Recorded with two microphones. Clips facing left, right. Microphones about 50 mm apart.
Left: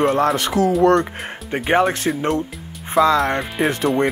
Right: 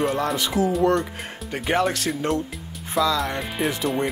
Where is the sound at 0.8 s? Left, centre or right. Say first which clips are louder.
Left 7 dB; left.